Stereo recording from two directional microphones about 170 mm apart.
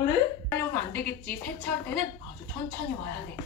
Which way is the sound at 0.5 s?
15° left (ahead or behind).